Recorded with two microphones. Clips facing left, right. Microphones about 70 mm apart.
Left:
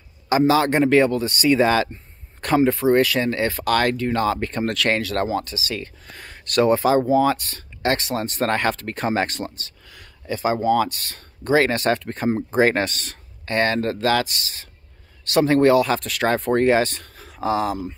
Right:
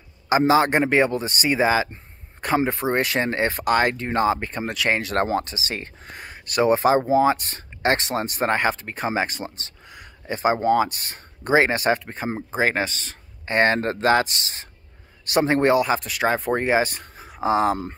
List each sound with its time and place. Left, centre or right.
0.5 s speech: right
2.6 s speech: right
5.1 s speech: right
6.2 s speech: centre; by 8.3 s right
8.3 s speech: centre
9.6 s a sound: right
10.8 s speech: right; by 13.2 s centre
13.5 s speech: right
16.0 s speech: centre
17.6 s speech: right